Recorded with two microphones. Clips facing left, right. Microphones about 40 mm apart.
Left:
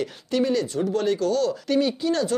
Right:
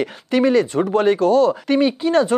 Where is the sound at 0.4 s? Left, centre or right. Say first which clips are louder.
Right 7 dB; right.